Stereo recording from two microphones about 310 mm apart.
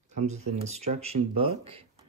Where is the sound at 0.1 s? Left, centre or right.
Right.